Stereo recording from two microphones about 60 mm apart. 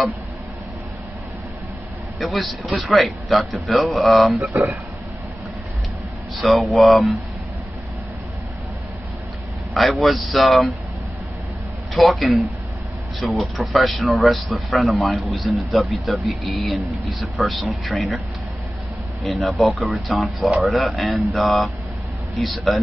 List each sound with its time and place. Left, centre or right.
2.1 s speech: centre
6.4 s speech: centre
9.8 s speech: centre
11.9 s speech: centre
19.2 s speech: centre